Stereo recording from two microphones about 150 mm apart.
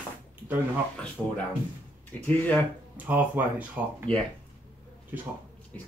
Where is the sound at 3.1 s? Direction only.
10° right (ahead or behind).